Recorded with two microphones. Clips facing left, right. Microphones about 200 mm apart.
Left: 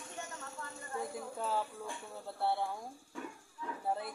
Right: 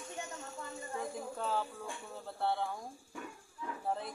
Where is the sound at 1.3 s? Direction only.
5° left (ahead or behind).